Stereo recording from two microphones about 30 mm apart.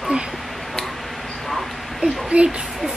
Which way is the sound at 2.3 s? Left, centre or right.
Right.